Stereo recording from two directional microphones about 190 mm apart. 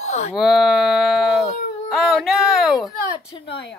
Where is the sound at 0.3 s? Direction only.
Centre (ahead or behind).